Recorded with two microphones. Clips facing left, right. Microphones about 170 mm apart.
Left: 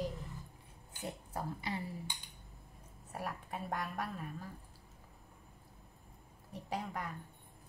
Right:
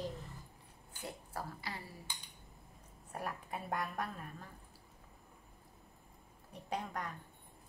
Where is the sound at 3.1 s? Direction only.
Centre (ahead or behind).